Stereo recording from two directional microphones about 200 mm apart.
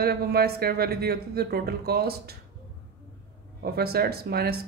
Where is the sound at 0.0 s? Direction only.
50° right (ahead or behind).